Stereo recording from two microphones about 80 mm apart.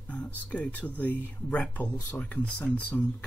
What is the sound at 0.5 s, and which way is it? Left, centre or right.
Speech, centre.